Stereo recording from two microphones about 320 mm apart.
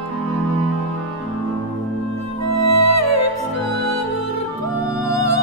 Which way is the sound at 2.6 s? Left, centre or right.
Left.